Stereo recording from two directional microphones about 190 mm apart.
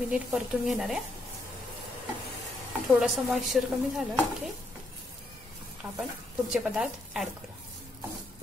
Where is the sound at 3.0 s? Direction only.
Centre (ahead or behind).